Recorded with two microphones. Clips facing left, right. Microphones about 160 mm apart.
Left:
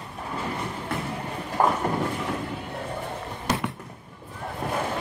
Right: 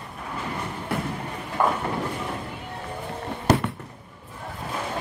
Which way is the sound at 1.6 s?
35° left (ahead or behind).